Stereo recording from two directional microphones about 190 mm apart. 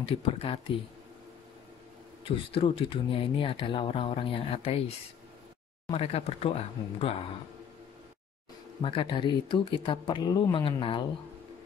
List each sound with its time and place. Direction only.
0.0 s speech: 30° left (ahead or behind)
2.2 s speech: 30° left (ahead or behind)
8.8 s speech: 25° left (ahead or behind)